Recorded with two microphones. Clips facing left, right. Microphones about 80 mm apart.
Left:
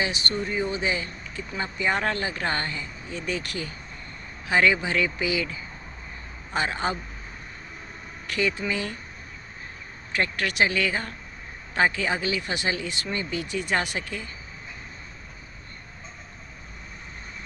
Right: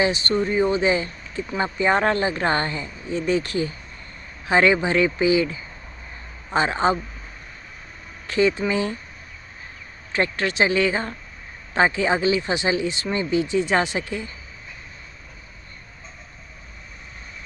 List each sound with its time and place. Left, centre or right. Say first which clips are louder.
0.0 s speech: right 7 dB; right
8.3 s speech: right 7 dB; right
10.1 s speech: right 3 dB; right